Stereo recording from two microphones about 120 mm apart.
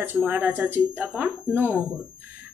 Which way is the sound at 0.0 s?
15° right (ahead or behind).